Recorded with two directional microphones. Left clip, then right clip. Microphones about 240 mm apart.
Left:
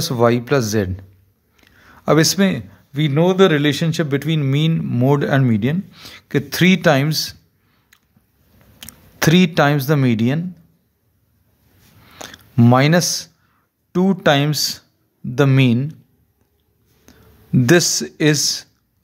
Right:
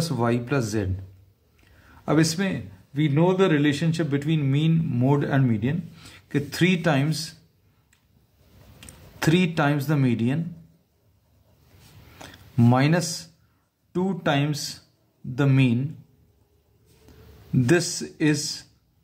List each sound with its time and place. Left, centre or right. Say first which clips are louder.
0.0 s a man's voice: left 9 dB; left
8.7 s speech: left 9 dB; left
12.2 s a man's voice: left 7 dB; left
17.1 s a sound: left 5 dB; left
17.6 s a man's voice: left 8 dB; left